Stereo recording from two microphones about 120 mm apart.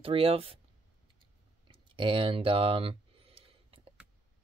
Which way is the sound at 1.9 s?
45° right (ahead or behind).